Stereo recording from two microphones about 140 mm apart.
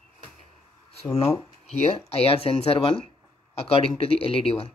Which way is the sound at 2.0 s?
45° left (ahead or behind).